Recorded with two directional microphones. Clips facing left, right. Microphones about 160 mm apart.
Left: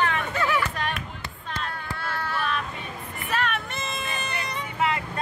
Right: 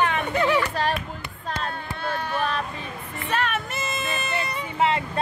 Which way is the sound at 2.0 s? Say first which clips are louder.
Right 4 dB; 20° right (ahead or behind).